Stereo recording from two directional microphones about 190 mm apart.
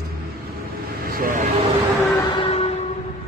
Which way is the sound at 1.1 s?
45° right (ahead or behind).